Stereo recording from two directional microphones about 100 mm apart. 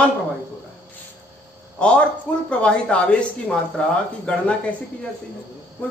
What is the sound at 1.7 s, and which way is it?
A man's voice, 10° left (ahead or behind).